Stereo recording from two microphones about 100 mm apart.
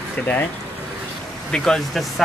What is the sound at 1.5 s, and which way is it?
Speech, 5° left (ahead or behind).